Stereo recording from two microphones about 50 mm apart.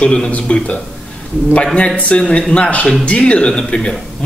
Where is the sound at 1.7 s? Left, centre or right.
Left.